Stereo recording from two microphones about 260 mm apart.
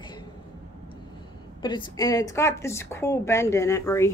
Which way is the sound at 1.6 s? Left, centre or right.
Centre.